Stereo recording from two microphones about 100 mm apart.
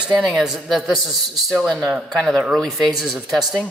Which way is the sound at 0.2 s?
Centre (ahead or behind).